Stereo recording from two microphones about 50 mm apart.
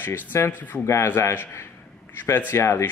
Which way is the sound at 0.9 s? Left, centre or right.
Left.